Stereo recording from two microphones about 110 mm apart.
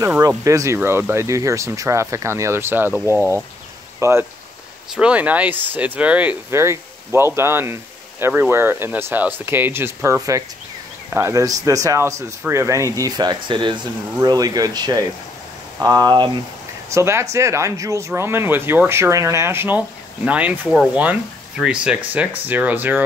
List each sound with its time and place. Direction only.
0.4 s speech: 30° right (ahead or behind)
4.9 s speech: 10° right (ahead or behind)
6.5 s speech: 25° right (ahead or behind); by 13.8 s 45° right (ahead or behind)
14.2 s speech: 35° right (ahead or behind); by 23.0 s 20° right (ahead or behind)